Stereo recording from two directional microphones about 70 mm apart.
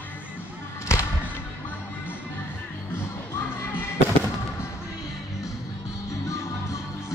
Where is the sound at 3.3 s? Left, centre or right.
Left.